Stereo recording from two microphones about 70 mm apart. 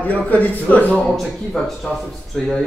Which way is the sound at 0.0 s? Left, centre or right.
Left.